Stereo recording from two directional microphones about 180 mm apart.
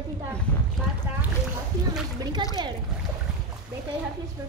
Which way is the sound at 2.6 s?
25° right (ahead or behind).